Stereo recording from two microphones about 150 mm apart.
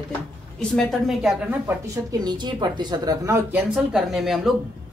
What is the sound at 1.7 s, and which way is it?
A woman's voice, 25° right (ahead or behind).